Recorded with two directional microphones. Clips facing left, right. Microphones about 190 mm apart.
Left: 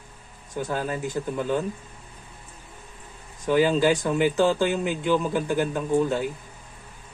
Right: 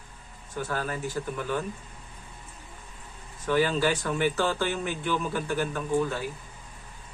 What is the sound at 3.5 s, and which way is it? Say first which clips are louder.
Speech: left 5 dB; 15° left (ahead or behind).